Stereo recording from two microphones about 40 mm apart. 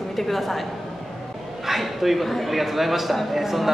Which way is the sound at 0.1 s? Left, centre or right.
Centre.